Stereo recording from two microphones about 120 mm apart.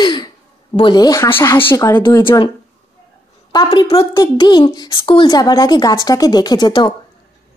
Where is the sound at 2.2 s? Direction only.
45° left (ahead or behind).